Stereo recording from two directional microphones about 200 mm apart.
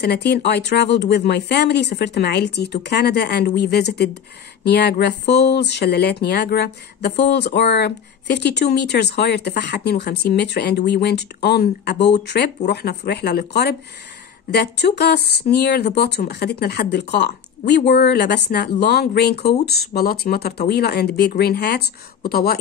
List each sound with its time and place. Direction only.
0.0 s speech: 55° left (ahead or behind)